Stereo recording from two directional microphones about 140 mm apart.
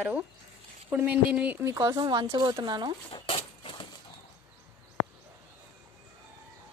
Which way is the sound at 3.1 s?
40° left (ahead or behind).